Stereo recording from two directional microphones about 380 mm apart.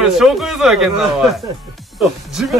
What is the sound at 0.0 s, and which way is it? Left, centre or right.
Speech, centre.